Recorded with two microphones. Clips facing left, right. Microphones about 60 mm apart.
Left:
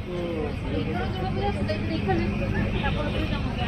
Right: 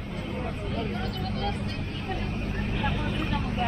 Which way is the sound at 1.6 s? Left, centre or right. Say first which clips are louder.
Left 7 dB; left.